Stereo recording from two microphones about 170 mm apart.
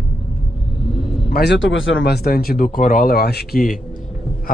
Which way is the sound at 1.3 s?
85° left.